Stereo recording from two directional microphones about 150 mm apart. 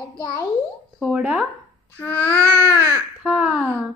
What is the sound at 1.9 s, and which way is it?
Babbling, 10° left (ahead or behind).